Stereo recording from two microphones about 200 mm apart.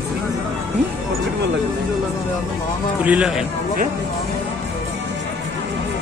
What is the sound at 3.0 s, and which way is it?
Speech, 5° right (ahead or behind).